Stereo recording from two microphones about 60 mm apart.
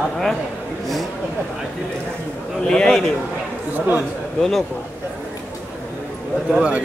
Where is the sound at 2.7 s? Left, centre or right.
Centre.